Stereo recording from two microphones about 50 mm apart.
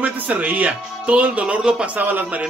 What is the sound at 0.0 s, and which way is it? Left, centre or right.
Speech, right.